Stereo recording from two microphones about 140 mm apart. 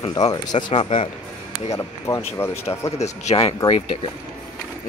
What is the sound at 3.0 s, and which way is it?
A man's voice, 50° left (ahead or behind).